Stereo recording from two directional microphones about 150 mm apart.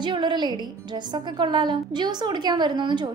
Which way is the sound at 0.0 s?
30° right (ahead or behind).